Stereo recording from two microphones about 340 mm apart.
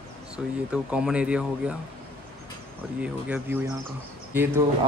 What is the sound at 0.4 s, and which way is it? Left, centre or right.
Speech, centre.